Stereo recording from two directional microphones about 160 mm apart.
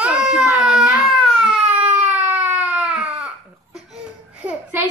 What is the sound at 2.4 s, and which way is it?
Baby cry, 10° right (ahead or behind).